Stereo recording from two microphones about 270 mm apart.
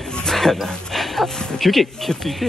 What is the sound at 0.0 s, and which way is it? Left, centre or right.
Speech, centre.